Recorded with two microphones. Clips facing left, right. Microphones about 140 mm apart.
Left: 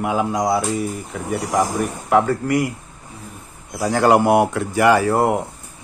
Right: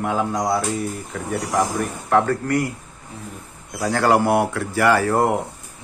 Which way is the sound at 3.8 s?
20° left (ahead or behind).